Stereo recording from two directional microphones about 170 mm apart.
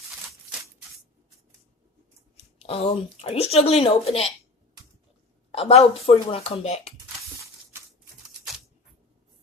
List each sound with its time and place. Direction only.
2.6 s speech: 35° left (ahead or behind)
5.5 s speech: 35° left (ahead or behind)